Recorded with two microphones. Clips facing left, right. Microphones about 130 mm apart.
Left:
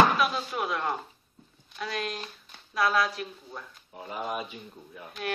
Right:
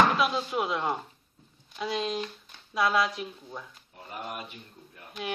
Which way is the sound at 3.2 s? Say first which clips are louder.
Right 1 dB; 5° right (ahead or behind).